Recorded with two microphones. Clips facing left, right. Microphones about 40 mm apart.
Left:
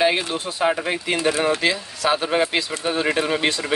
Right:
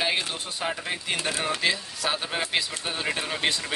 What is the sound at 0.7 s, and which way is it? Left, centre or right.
Speech, left.